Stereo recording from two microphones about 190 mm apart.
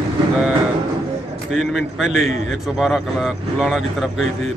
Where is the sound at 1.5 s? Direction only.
Centre (ahead or behind).